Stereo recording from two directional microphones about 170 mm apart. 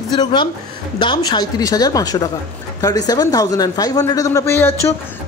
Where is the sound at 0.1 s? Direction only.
25° left (ahead or behind).